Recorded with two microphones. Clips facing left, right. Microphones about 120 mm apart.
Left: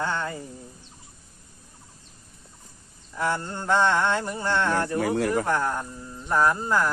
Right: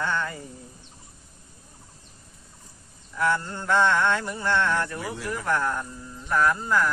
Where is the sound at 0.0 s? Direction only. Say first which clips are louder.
Even; 30° left (ahead or behind).